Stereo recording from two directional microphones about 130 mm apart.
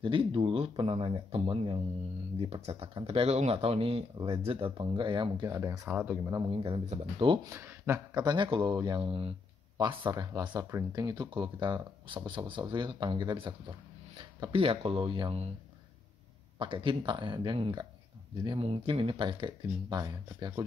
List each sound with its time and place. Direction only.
0.0 s speech: 40° right (ahead or behind)
5.5 s speech: 25° right (ahead or behind)
5.9 s speech: 10° right (ahead or behind)
6.3 s speech: 30° right (ahead or behind)
7.0 s speech: 45° right (ahead or behind)
7.4 s speech: 15° right (ahead or behind)
8.1 s speech: 30° right (ahead or behind)
9.0 s speech: 45° right (ahead or behind)
9.8 s speech: 35° right (ahead or behind)
14.4 s speech: 45° right (ahead or behind)
16.5 s speech: 40° right (ahead or behind)